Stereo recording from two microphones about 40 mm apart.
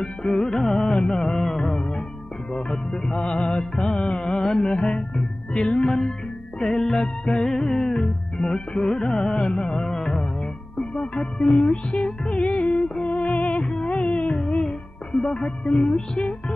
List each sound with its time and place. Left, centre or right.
0.2 s music: left
1.6 s music: left
6.6 s music: centre; by 13.6 s left
13.6 s music: left